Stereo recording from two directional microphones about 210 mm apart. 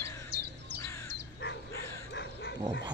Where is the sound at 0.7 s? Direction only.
15° left (ahead or behind).